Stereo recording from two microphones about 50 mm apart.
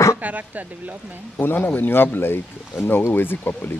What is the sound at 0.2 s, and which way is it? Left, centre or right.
Speech, right.